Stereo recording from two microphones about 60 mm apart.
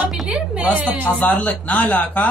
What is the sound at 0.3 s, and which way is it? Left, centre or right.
Speech, right.